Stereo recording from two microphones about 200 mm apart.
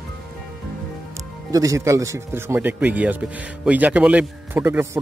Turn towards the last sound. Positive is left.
turn(degrees=-10)  # may be behind; listen again after turning